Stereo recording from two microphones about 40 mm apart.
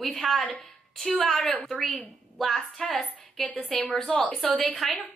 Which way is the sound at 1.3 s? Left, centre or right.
Left.